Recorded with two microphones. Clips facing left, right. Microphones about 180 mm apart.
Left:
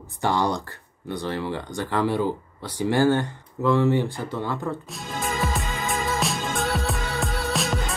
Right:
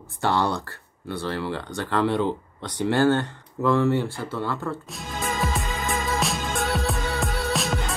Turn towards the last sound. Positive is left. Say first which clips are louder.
# even
turn(degrees=0)  # may be behind; listen again after turning